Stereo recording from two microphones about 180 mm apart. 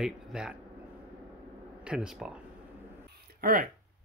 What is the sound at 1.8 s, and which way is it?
Speech, 5° right (ahead or behind).